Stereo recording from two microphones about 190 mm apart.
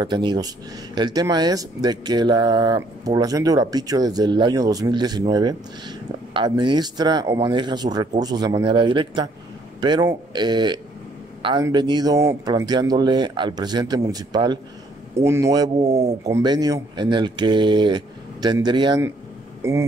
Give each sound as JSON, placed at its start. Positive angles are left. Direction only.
{"t": 0.0, "sound": "a man's voice", "side_deg": -25}
{"t": 16.3, "sound": "speech", "side_deg": -20}